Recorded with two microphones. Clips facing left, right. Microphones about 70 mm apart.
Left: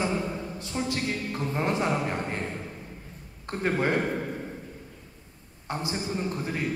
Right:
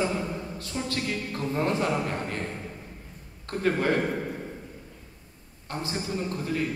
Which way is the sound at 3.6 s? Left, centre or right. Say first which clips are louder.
Right 1 dB; left.